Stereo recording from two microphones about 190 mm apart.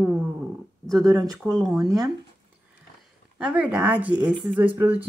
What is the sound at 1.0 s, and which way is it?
Speech, 20° right (ahead or behind).